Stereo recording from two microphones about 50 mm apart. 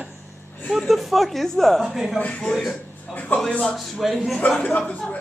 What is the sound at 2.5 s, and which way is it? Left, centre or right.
Speech, centre.